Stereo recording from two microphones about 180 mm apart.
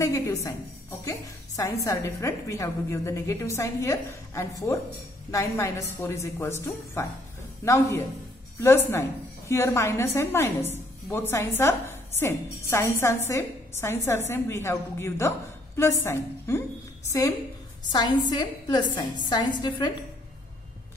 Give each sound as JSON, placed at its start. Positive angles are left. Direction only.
{"t": 0.0, "sound": "a woman's voice", "side_deg": 15}
{"t": 1.9, "sound": "a woman's voice", "side_deg": 15}
{"t": 17.9, "sound": "a woman's voice", "side_deg": 20}